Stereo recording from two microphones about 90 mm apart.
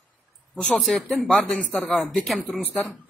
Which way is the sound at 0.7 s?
Centre (ahead or behind).